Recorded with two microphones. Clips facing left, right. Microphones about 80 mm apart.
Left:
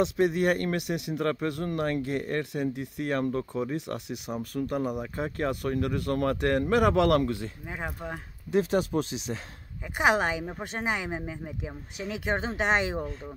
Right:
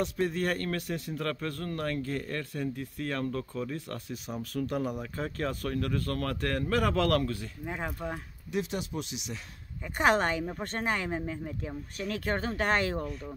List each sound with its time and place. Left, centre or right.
0.0 s a woman's voice: centre
7.6 s a woman's voice: centre
8.5 s speech: left
9.9 s a woman's voice: centre